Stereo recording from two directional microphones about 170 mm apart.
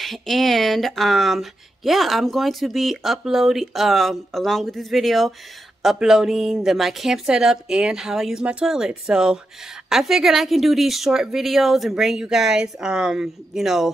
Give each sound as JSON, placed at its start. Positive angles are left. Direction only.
{"t": 0.0, "sound": "speech", "side_deg": 0}